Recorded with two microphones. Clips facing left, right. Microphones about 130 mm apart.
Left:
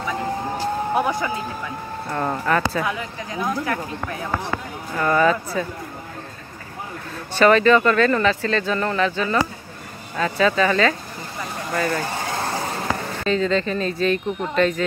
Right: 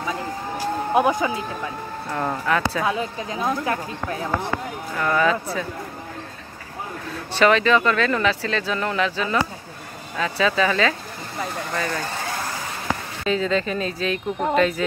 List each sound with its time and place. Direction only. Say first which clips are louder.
0.9 s speech: right 5 dB; 20° right (ahead or behind)
2.0 s speech: left 1 dB; 5° left (ahead or behind)
2.8 s speech: right 2 dB; 25° right (ahead or behind)
4.9 s speech: left 2 dB; 5° left (ahead or behind)
7.3 s speech: left 3 dB; centre (ahead or behind)
13.2 s speech: left 1 dB; 5° right (ahead or behind)